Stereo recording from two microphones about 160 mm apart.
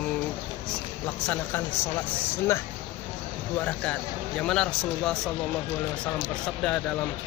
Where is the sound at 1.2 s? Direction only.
5° left (ahead or behind).